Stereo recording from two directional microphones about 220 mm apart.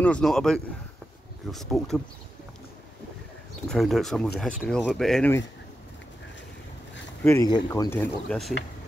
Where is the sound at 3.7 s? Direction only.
Centre (ahead or behind).